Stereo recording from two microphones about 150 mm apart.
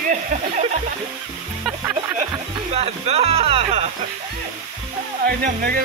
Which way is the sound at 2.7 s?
45° right (ahead or behind).